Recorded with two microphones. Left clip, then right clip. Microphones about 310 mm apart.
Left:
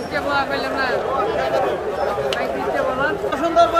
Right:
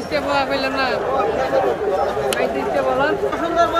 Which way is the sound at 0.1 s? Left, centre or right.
Right.